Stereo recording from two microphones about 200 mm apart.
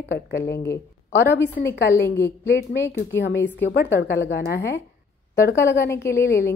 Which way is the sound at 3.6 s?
60° left (ahead or behind).